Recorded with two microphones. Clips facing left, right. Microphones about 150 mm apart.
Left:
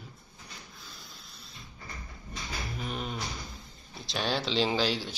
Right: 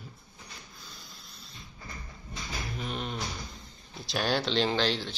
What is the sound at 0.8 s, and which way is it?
Printer, centre (ahead or behind).